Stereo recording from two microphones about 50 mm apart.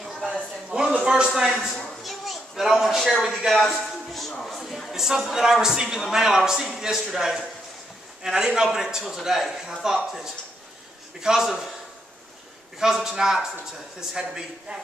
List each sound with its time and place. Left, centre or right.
0.0 s a sound: centre
0.7 s a sound: centre
0.9 s a man's voice: right
3.5 s a man's voice: centre
5.9 s a man's voice: centre
6.2 s a man's voice: centre
12.7 s a man's voice: centre